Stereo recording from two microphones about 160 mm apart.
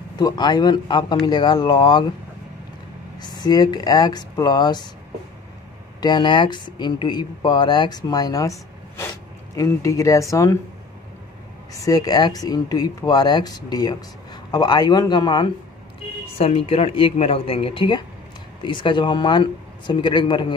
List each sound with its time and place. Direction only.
0.2 s speech: 25° left (ahead or behind)
3.2 s speech: 25° left (ahead or behind)
5.9 s speech: 30° left (ahead or behind)
11.7 s speech: 20° left (ahead or behind)
16.3 s speech: 40° left (ahead or behind)